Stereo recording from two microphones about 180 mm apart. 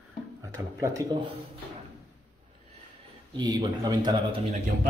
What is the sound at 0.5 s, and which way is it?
Speech, 15° right (ahead or behind).